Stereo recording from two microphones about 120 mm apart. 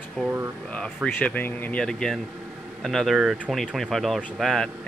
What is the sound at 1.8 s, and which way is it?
Speech, 5° left (ahead or behind).